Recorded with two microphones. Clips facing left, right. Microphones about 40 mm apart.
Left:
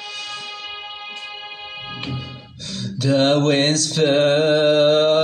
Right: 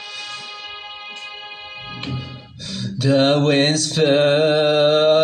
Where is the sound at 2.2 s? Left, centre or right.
Centre.